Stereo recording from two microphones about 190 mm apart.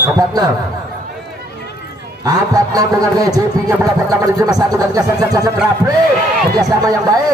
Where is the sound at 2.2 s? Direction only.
20° right (ahead or behind).